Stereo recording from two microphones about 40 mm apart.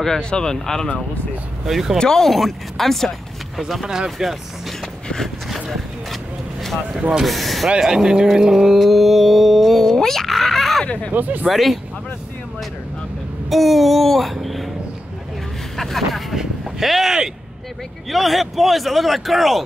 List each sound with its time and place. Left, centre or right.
0.2 s speech: left
1.7 s speech: centre
2.0 s speech: centre
2.2 s speech: centre
3.8 s speech: centre
7.2 s speech: centre
7.8 s speech: centre
8.7 s music: centre
11.1 s speech: right
11.4 s speech: centre
13.5 s a sound: centre
15.7 s speech: centre